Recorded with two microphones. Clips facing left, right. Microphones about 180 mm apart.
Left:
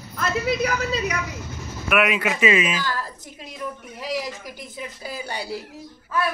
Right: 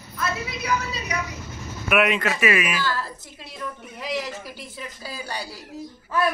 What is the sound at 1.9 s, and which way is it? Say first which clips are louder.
Speech: even; 5° left (ahead or behind).